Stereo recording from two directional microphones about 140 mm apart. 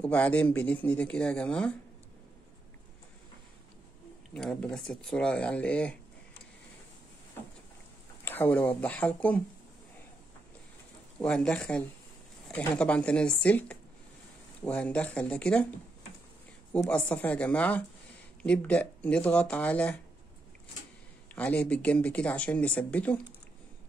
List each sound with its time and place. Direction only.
0.0 s speech: 10° left (ahead or behind)
4.3 s speech: 5° left (ahead or behind)
8.3 s speech: 15° left (ahead or behind)
11.1 s speech: 5° left (ahead or behind)
16.9 s speech: 10° left (ahead or behind)
21.4 s speech: 10° left (ahead or behind)